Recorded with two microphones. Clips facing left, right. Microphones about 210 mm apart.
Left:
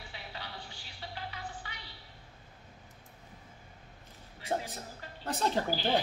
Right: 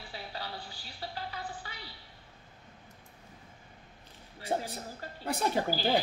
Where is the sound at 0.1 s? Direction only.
35° right (ahead or behind).